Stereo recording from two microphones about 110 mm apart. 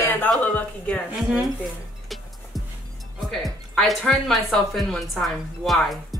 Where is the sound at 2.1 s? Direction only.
Centre (ahead or behind).